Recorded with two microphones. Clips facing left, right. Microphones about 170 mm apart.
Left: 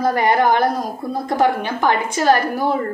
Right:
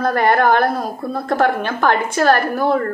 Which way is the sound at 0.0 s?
15° left (ahead or behind).